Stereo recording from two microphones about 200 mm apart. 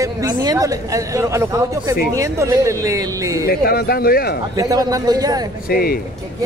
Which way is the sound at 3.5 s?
50° left (ahead or behind).